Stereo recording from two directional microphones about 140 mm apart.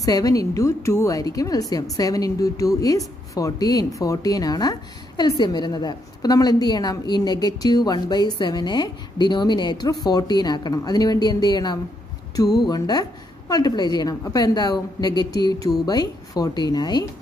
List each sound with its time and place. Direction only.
0.0 s a woman's voice: 25° left (ahead or behind)